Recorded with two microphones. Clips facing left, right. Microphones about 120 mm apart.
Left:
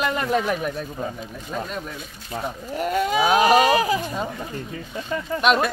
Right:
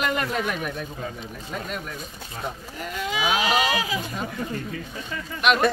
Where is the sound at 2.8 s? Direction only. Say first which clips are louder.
Left 7 dB; 45° left (ahead or behind).